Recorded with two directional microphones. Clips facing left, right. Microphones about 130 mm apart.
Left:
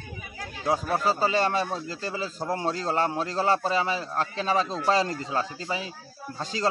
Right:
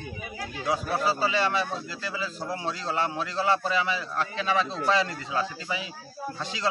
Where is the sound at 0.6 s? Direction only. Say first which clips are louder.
Left 2 dB; 45° left (ahead or behind).